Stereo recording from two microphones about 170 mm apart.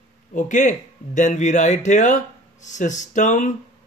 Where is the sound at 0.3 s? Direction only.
50° left (ahead or behind).